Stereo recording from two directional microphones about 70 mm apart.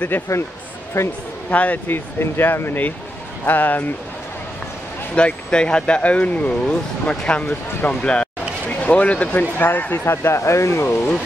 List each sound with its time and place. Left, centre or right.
0.1 s speech: left
1.0 s speech: left
1.5 s speech: left
5.1 s speech: centre
7.9 s a sound: centre
9.4 s speech: left
10.0 s speech: left